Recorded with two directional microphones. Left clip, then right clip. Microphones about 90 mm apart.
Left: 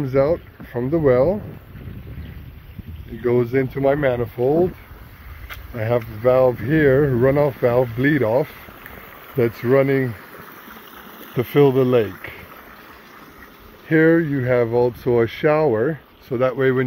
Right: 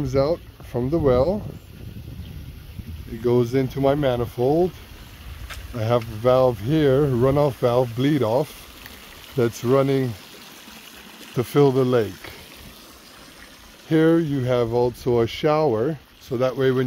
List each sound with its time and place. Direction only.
0.0 s speech: 35° right (ahead or behind)
3.3 s speech: 35° right (ahead or behind)
5.8 s speech: 35° right (ahead or behind)
11.1 s speech: 35° right (ahead or behind)
13.8 s speech: 35° right (ahead or behind)
15.7 s speech: 15° right (ahead or behind)
16.3 s speech: 30° right (ahead or behind)